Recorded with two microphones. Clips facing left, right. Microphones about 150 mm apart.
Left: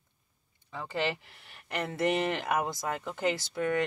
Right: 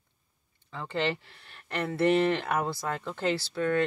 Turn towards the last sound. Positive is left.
turn(degrees=15)  # may be behind; listen again after turning